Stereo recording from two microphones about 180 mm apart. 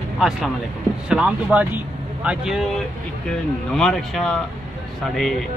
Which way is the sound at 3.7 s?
5° left (ahead or behind).